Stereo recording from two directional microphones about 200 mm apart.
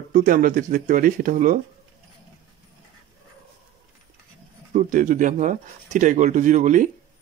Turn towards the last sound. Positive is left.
turn(degrees=-40)  # may be behind; listen again after turning